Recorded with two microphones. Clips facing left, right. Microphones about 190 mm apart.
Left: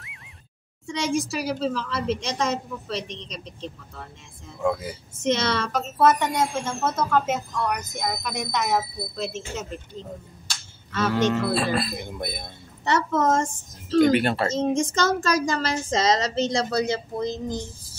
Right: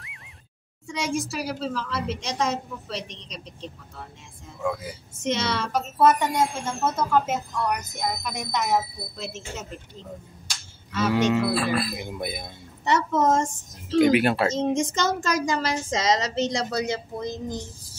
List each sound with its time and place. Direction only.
0.0 s a sound: centre (ahead or behind)
0.8 s a woman's voice: 5° right (ahead or behind)
5.2 s a woman's voice: 10° right (ahead or behind)
10.9 s a woman's voice: 10° right (ahead or behind)
11.5 s speech: 25° left (ahead or behind)
12.0 s a woman's voice: 5° right (ahead or behind)
13.9 s speech: 5° right (ahead or behind)
14.5 s a woman's voice: 20° right (ahead or behind)